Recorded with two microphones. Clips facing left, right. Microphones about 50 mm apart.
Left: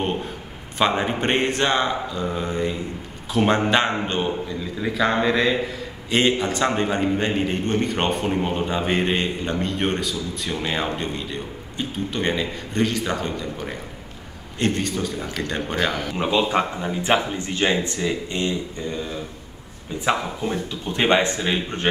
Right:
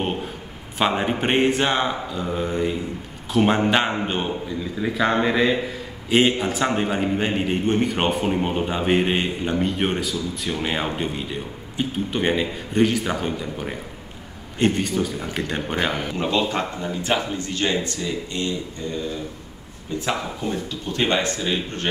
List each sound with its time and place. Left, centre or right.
0.7 s a man's voice: centre
16.2 s speech: centre